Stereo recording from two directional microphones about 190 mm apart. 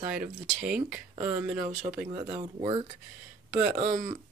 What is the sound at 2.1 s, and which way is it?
Speech, 25° right (ahead or behind).